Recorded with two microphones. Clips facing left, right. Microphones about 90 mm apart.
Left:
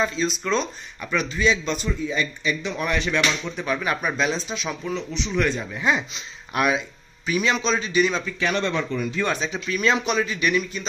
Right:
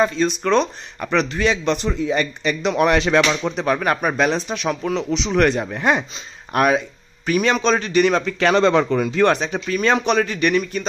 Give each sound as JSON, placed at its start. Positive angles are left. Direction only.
{"t": 0.0, "sound": "a man's voice", "side_deg": -50}
{"t": 2.0, "sound": "a man's voice", "side_deg": -70}
{"t": 4.9, "sound": "a man's voice", "side_deg": -90}